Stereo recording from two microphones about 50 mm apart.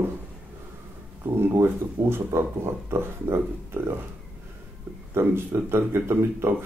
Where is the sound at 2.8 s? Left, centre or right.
Right.